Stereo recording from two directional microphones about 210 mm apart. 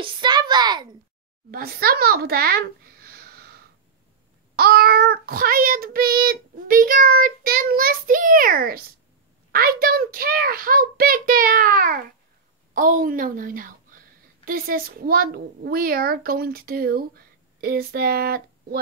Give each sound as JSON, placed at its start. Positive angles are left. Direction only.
{"t": 0.0, "sound": "a sound", "side_deg": -20}
{"t": 1.5, "sound": "a child's voice", "side_deg": -45}
{"t": 4.6, "sound": "child singing", "side_deg": -45}
{"t": 12.7, "sound": "a woman's voice", "side_deg": -40}